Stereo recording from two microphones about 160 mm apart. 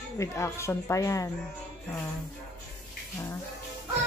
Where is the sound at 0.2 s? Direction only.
20° left (ahead or behind).